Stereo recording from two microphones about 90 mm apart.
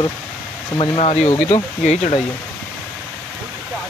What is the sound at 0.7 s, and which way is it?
Speech, 90° left.